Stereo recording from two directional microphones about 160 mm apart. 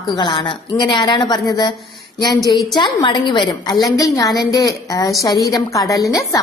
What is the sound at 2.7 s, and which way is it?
A woman's voice, 30° left (ahead or behind).